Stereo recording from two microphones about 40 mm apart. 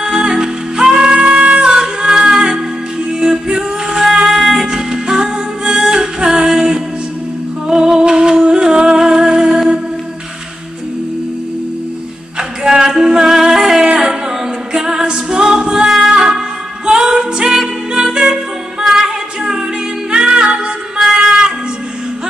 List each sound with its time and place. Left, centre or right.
0.0 s music: centre
4.0 s music: centre
12.4 s singing: centre
14.7 s music: centre